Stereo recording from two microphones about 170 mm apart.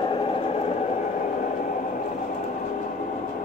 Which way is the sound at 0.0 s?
30° left (ahead or behind).